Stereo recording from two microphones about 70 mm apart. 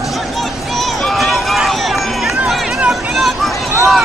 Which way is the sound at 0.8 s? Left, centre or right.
Centre.